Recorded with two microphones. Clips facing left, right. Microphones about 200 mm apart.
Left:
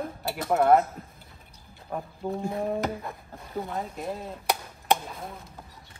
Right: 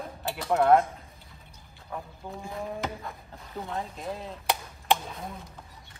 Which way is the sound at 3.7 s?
5° left (ahead or behind).